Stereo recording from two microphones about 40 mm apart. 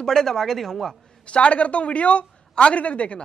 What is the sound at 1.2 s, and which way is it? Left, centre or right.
Speech, left.